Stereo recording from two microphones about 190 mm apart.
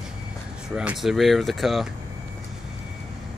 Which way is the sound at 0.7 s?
5° right (ahead or behind).